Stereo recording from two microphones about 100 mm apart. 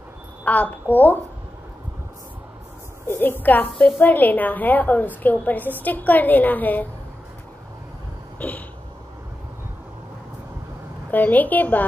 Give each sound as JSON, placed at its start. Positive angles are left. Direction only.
{"t": 0.5, "sound": "a woman's voice", "side_deg": 15}
{"t": 3.1, "sound": "a woman's voice", "side_deg": 20}
{"t": 8.4, "sound": "a sound", "side_deg": 15}
{"t": 11.1, "sound": "a woman's voice", "side_deg": 15}